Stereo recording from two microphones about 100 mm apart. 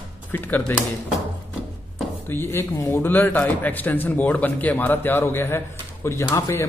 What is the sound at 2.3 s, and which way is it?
A man's voice, 25° left (ahead or behind).